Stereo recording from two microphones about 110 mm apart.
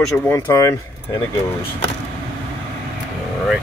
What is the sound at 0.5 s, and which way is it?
Speech, 35° left (ahead or behind).